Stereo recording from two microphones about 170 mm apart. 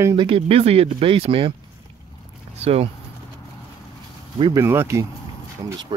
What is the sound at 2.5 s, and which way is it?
Speech, 35° right (ahead or behind).